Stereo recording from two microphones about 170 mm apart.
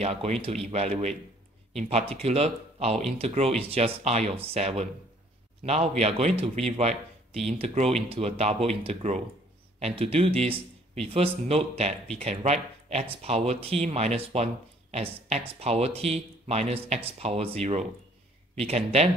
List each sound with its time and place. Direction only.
0.0 s speech: 40° right (ahead or behind)